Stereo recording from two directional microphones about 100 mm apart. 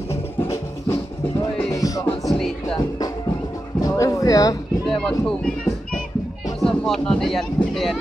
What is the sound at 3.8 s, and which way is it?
Music, 35° left (ahead or behind).